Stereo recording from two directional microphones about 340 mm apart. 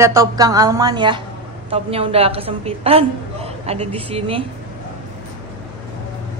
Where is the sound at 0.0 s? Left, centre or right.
Centre.